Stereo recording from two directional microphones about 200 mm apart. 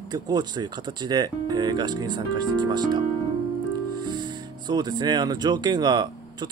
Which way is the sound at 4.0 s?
20° right (ahead or behind).